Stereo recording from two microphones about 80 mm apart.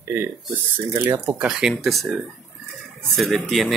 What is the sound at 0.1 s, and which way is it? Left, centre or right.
Speech, right.